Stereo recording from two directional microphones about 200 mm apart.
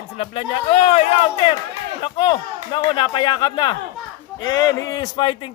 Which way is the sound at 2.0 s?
25° left (ahead or behind).